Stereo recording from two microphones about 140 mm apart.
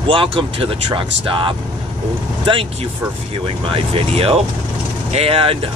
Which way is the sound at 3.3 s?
40° right (ahead or behind).